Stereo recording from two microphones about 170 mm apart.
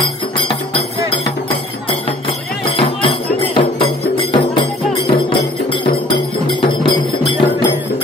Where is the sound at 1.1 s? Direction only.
35° left (ahead or behind).